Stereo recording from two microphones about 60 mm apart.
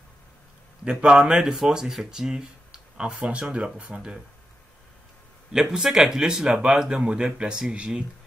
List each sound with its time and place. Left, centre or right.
0.8 s speech: centre
5.5 s speech: centre